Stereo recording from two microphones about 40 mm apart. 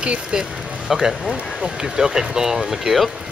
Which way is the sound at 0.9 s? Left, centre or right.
Centre.